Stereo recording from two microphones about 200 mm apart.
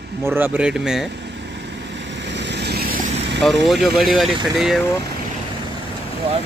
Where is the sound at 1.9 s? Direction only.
60° right (ahead or behind).